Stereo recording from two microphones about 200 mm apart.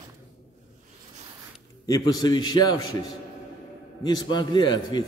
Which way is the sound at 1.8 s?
20° left (ahead or behind).